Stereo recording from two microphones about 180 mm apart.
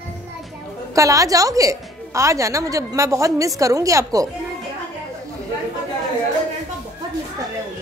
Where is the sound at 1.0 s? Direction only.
20° right (ahead or behind).